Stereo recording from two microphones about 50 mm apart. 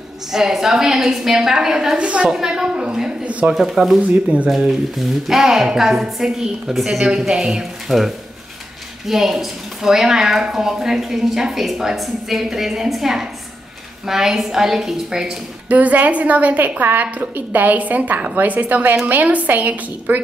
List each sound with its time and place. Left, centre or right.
0.3 s a woman's voice: centre
2.0 s a woman's voice: right
2.2 s a woman's voice: centre
3.3 s a woman's voice: right
3.5 s a woman's voice: centre
15.7 s a woman's voice: right